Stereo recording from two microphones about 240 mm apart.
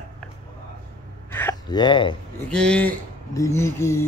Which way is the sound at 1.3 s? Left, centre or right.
Centre.